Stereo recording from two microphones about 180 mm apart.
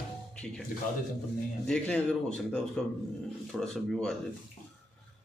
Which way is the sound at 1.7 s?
5° left (ahead or behind).